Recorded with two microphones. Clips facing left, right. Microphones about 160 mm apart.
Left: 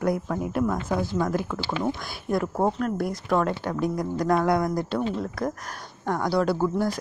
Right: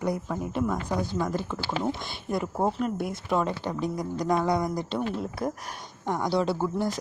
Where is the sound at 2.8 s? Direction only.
Centre (ahead or behind).